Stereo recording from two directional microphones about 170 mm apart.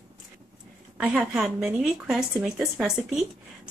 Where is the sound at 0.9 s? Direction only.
5° right (ahead or behind).